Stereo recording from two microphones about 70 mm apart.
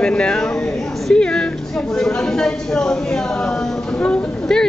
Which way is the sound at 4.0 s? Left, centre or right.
Centre.